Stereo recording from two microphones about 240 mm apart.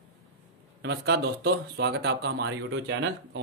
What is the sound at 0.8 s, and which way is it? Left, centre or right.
Speech, right.